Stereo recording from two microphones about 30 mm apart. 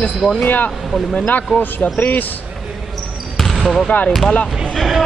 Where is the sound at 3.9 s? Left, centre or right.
Left.